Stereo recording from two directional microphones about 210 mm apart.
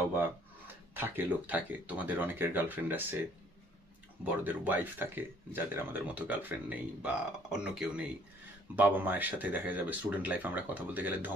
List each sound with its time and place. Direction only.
0.9 s speech: 10° right (ahead or behind)
4.2 s speech: 10° right (ahead or behind)